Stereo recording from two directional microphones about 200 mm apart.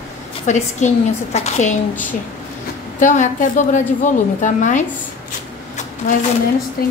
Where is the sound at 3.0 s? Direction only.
40° left (ahead or behind).